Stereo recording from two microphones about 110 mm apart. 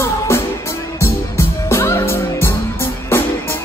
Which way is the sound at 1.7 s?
25° left (ahead or behind).